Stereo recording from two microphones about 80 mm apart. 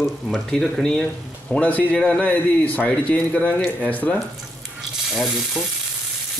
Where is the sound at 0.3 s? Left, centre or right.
Centre.